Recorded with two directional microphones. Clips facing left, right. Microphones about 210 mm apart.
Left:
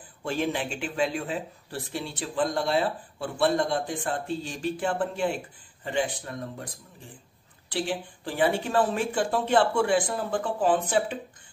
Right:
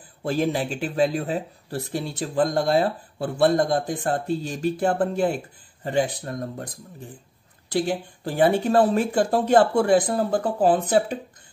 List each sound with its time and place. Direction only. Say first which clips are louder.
0.2 s speech: right 5 dB; 35° right (ahead or behind)
7.7 s speech: right 6 dB; 40° right (ahead or behind)